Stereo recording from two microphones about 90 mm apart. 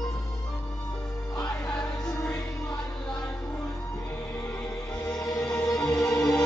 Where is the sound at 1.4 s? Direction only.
10° left (ahead or behind).